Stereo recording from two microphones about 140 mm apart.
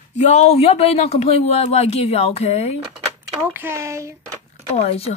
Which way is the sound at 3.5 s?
15° right (ahead or behind).